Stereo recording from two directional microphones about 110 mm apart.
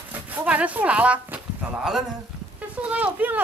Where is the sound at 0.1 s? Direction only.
15° right (ahead or behind).